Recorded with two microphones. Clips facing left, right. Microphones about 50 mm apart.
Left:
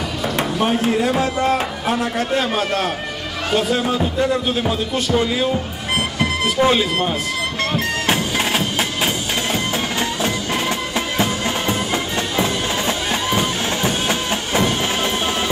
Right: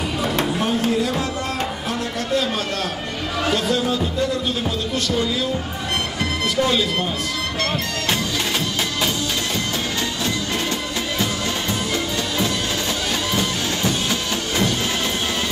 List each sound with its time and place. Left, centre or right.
0.8 s speech: left
3.7 s speech: left
7.7 s music: left
13.3 s music: left